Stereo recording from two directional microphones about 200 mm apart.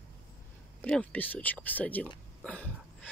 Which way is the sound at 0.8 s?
5° left (ahead or behind).